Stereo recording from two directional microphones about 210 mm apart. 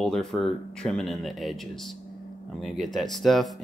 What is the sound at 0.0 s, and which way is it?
Speech, centre (ahead or behind).